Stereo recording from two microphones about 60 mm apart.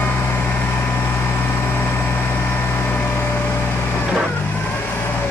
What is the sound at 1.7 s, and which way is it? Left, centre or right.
Vehicle, left.